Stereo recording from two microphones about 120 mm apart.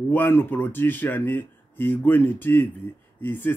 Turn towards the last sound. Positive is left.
turn(degrees=15)  # may be behind; listen again after turning